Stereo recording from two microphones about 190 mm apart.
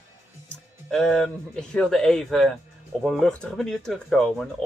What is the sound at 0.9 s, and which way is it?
Speech, 5° left (ahead or behind).